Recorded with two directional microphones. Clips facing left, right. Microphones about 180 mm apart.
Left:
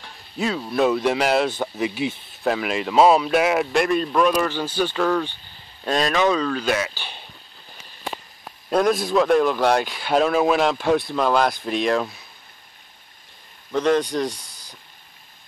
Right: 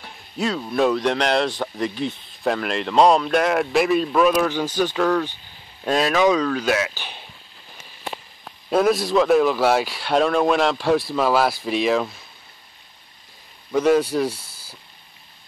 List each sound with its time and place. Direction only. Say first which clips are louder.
0.4 s speech: even; centre (ahead or behind)
8.6 s speech: right 1 dB; centre (ahead or behind)
13.7 s speech: right 2 dB; 5° right (ahead or behind)